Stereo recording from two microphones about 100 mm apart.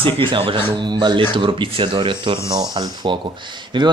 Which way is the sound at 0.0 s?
55° right (ahead or behind).